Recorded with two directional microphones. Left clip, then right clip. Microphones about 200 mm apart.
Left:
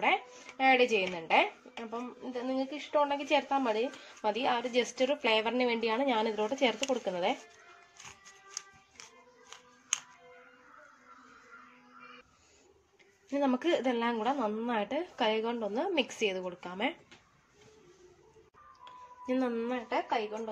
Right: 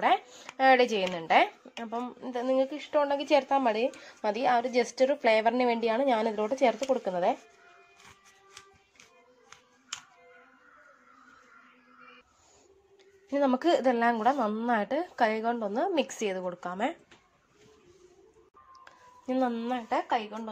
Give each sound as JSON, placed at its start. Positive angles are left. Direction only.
{"t": 0.0, "sound": "a woman's voice", "side_deg": -40}
{"t": 4.8, "sound": "a woman's voice", "side_deg": -10}
{"t": 5.1, "sound": "a woman's voice", "side_deg": -30}
{"t": 13.4, "sound": "a woman's voice", "side_deg": -30}
{"t": 19.2, "sound": "a woman's voice", "side_deg": -35}